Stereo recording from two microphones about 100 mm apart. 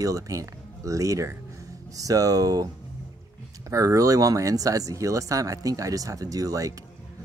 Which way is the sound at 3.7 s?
35° right (ahead or behind).